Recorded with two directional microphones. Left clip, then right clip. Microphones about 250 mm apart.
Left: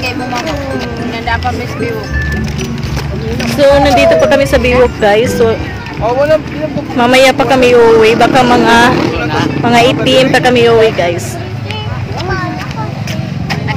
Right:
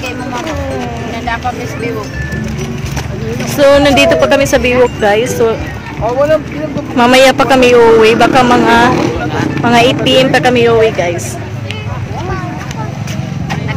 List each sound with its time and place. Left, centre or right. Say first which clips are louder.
3.5 s speech: even; centre
4.2 s speech: left 1 dB; centre
7.0 s a woman's voice: right 1 dB; centre